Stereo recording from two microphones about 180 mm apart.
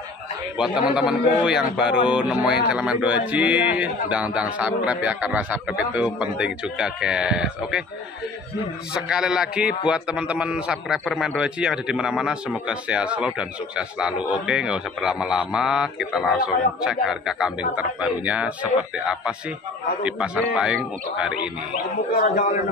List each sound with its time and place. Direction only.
0.6 s a man's voice: 5° right (ahead or behind)
8.9 s a man's voice: 5° right (ahead or behind)
22.1 s a man's voice: 50° left (ahead or behind)